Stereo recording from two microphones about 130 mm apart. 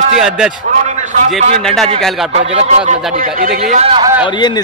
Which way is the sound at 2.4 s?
60° right (ahead or behind).